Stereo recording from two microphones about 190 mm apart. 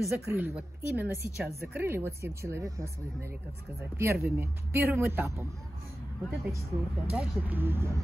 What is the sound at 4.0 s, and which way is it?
Speech, 10° right (ahead or behind).